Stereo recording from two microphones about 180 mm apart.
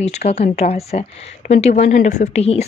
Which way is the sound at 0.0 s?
35° left (ahead or behind).